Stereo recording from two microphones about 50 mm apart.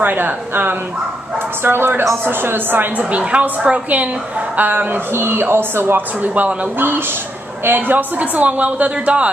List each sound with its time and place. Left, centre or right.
0.0 s a woman's voice: right
3.0 s a woman's voice: right
7.6 s a woman's voice: right
8.2 s a woman's voice: right